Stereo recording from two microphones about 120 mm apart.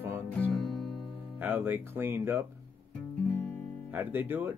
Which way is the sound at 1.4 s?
15° right (ahead or behind).